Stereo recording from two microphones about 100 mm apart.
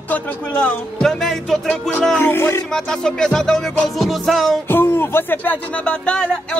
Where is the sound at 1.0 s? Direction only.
5° left (ahead or behind).